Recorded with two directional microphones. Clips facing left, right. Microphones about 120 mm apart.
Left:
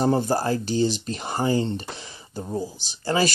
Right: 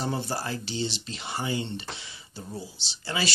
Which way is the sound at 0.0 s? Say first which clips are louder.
Left 9 dB; 45° left (ahead or behind).